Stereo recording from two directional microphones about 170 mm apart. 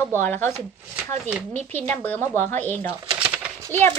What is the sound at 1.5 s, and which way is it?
Speech, 10° left (ahead or behind).